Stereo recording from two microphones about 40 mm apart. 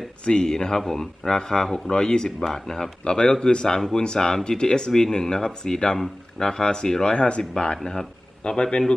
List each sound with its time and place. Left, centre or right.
0.2 s speech: left